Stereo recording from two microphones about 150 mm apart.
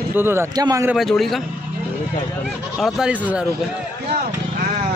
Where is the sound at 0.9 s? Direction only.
Centre (ahead or behind).